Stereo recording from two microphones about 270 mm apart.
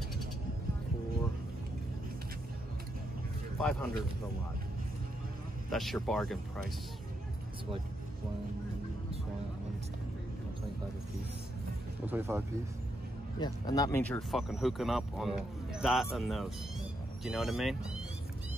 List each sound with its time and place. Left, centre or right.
3.5 s speech: centre
5.7 s speech: centre
12.1 s speech: centre
13.4 s speech: centre